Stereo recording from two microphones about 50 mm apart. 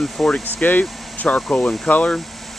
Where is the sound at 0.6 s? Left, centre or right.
Left.